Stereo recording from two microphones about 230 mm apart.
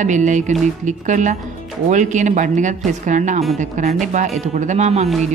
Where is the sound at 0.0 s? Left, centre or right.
Right.